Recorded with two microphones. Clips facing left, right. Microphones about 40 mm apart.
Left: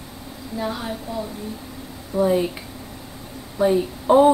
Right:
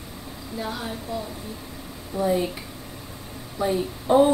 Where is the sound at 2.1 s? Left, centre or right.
Left.